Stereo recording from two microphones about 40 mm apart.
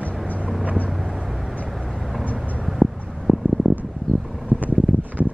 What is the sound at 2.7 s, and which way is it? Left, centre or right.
Vehicle, centre.